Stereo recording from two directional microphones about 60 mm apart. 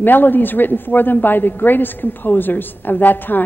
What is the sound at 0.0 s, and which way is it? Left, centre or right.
A woman's voice, left.